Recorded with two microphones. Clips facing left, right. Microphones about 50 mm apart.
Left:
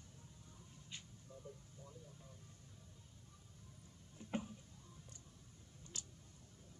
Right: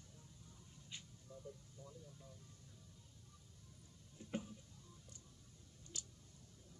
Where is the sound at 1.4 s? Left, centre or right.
Centre.